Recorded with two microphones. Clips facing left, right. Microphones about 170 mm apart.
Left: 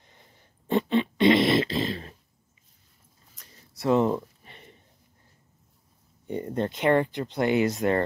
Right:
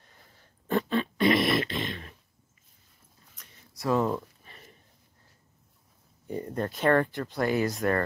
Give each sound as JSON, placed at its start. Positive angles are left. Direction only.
{"t": 0.0, "sound": "dog", "side_deg": 20}
{"t": 3.3, "sound": "a sound", "side_deg": 30}
{"t": 6.2, "sound": "speech", "side_deg": 25}